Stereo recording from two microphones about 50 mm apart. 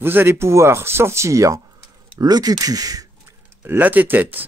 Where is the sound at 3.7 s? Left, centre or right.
Right.